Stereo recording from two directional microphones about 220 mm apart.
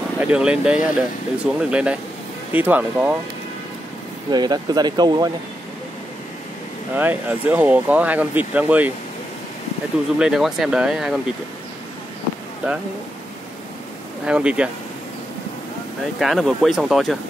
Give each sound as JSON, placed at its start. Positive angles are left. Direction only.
{"t": 0.2, "sound": "speech", "side_deg": -5}
{"t": 4.3, "sound": "speech", "side_deg": -20}
{"t": 7.0, "sound": "speech", "side_deg": -10}
{"t": 10.1, "sound": "speech", "side_deg": -5}
{"t": 14.2, "sound": "speech", "side_deg": -5}
{"t": 16.2, "sound": "speech", "side_deg": 0}